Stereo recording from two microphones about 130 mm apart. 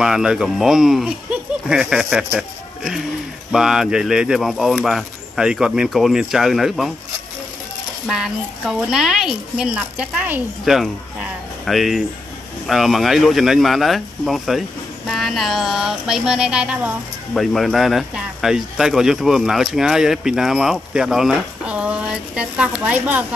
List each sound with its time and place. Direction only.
0.0 s speech: 5° right (ahead or behind)
8.1 s speech: 5° right (ahead or behind)